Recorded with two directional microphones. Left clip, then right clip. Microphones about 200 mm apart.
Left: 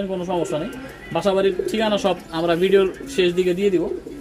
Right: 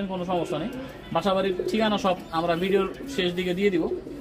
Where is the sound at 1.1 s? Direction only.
50° left (ahead or behind).